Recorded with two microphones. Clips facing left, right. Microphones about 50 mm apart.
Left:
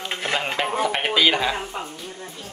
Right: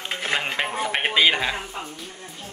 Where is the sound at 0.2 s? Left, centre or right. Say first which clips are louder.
Left 1 dB; centre.